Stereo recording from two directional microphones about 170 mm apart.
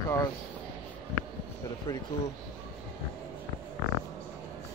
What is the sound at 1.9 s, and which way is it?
Speech, 15° left (ahead or behind).